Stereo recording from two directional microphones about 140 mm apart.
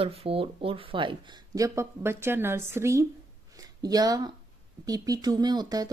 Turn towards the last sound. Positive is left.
turn(degrees=-30)  # may be behind; listen again after turning